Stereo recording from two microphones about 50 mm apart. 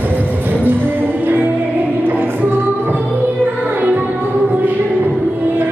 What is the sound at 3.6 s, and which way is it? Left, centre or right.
Music, right.